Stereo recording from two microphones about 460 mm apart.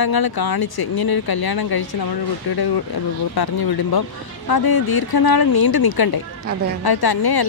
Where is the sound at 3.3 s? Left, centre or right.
Left.